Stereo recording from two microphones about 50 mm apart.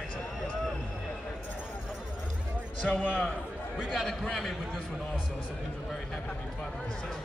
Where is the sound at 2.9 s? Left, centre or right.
Left.